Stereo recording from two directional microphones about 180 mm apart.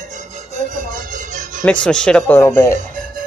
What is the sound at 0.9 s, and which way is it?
Music, 45° right (ahead or behind).